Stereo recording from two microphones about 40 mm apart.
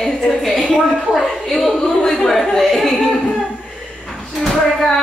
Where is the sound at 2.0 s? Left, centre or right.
Centre.